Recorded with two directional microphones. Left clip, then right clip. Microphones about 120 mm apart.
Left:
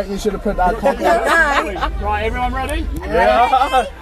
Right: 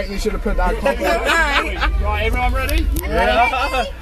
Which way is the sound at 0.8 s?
35° left (ahead or behind).